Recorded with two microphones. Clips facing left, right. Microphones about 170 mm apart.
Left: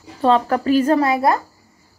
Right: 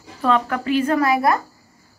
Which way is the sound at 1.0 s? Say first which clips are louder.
Left 1 dB; 25° left (ahead or behind).